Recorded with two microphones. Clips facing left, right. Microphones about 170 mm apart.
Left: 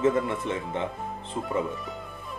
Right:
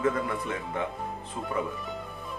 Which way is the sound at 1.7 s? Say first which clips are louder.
Even; centre (ahead or behind).